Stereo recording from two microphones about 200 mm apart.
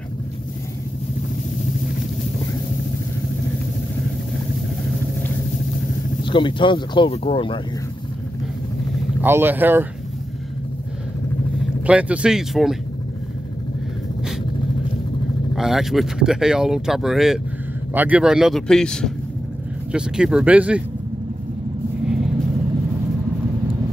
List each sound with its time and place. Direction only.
6.2 s speech: 25° left (ahead or behind)
9.2 s speech: 10° right (ahead or behind)
11.8 s speech: 5° right (ahead or behind)
15.5 s speech: centre (ahead or behind)